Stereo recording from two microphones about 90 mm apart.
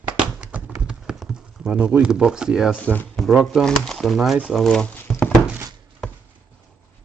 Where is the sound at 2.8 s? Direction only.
15° left (ahead or behind).